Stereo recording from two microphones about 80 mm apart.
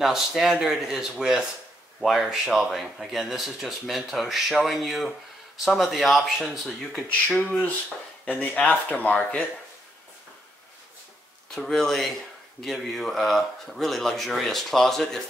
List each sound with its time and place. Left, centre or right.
0.0 s speech: centre
8.3 s speech: centre
11.5 s speech: centre